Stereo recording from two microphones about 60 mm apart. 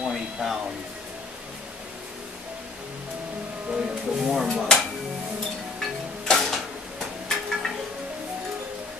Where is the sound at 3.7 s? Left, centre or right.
Centre.